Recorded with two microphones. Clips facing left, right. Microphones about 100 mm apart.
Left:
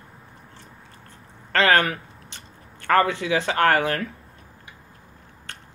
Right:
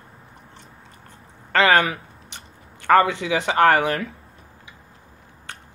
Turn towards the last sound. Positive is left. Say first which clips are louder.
# right 3 dB
turn(degrees=-15)  # may be behind; listen again after turning